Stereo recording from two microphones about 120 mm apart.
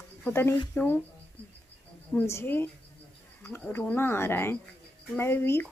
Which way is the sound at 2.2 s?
20° left (ahead or behind).